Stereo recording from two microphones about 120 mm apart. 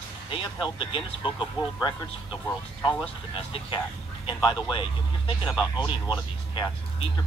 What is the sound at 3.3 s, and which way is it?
Speech, 50° left (ahead or behind).